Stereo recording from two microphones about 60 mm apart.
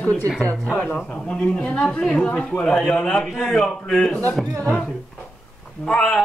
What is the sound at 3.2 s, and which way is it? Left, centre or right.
A man's voice, centre.